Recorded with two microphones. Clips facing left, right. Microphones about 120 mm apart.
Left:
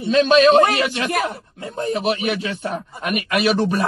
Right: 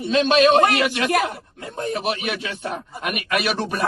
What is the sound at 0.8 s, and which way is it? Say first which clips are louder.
A man's voice: right 1 dB; 30° left (ahead or behind).